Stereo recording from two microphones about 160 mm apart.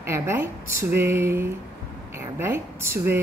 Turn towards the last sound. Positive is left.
turn(degrees=-15)  # may be behind; listen again after turning